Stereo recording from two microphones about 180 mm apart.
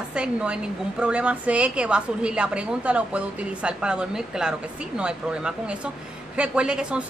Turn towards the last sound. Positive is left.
turn(degrees=-5)  # may be behind; listen again after turning